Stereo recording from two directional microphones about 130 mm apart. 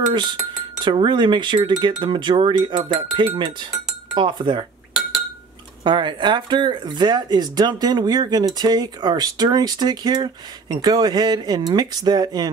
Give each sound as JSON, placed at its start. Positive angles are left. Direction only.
{"t": 0.1, "sound": "speech", "side_deg": -35}
{"t": 5.9, "sound": "speech", "side_deg": -35}